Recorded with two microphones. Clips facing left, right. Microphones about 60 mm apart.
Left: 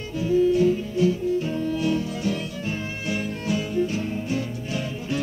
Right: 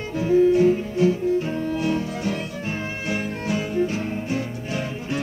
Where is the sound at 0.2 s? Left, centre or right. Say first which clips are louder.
Right 3 dB; right.